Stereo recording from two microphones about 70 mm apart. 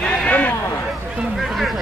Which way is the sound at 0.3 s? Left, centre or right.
Left.